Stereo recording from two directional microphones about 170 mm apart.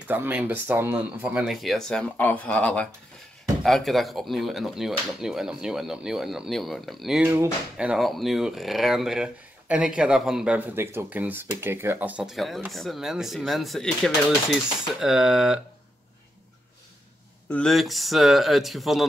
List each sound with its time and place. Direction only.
0.1 s speech: 10° right (ahead or behind)
17.5 s speech: 5° left (ahead or behind)